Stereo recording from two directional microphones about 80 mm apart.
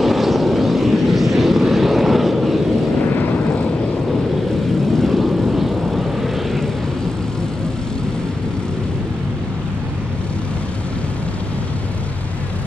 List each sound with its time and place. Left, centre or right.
0.0 s vehicle: centre
3.1 s vehicle: left
4.9 s vehicle: centre